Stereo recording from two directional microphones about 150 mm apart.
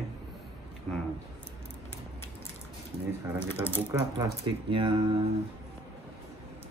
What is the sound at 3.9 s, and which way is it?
Speech, 25° right (ahead or behind).